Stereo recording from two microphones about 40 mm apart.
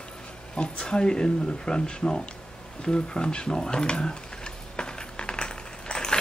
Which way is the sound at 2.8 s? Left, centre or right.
Left.